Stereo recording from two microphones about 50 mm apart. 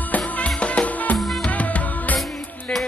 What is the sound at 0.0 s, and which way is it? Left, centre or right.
Music, left.